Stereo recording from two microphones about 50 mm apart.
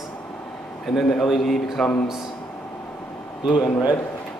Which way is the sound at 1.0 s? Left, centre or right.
Centre.